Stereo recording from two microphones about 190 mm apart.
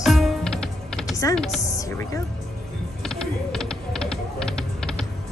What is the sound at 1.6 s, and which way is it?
Speech, 15° left (ahead or behind).